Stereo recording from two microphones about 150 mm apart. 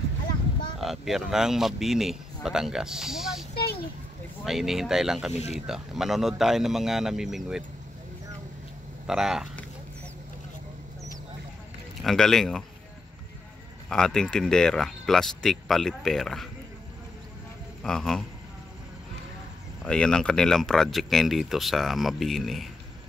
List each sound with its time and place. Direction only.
0.7 s speech: centre (ahead or behind)
4.5 s speech: centre (ahead or behind)
5.3 s speech: 45° left (ahead or behind)
5.7 s speech: centre (ahead or behind)
9.0 s speech: 5° right (ahead or behind)
12.0 s speech: 5° left (ahead or behind)
13.8 s speech: 5° left (ahead or behind)
17.8 s speech: 5° left (ahead or behind)
19.8 s speech: 5° left (ahead or behind)